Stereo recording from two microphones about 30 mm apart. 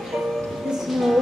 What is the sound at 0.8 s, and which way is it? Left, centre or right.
Music, centre.